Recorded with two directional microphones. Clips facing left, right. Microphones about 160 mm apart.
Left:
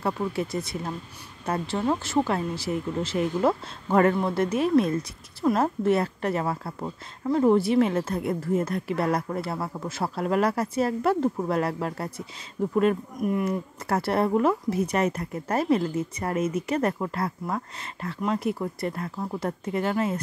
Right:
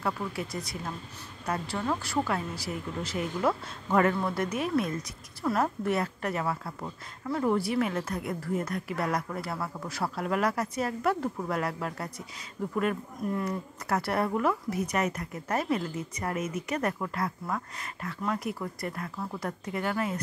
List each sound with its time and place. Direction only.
0.0 s a woman's voice: 25° left (ahead or behind)
13.2 s speech: 15° left (ahead or behind)
13.8 s a woman's voice: 30° left (ahead or behind)